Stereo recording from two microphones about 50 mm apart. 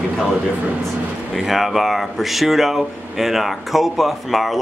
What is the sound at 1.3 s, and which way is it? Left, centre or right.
Speech, centre.